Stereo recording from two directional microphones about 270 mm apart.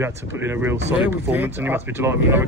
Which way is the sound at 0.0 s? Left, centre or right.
Centre.